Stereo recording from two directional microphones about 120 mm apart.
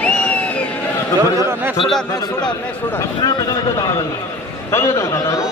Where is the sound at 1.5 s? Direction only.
15° right (ahead or behind).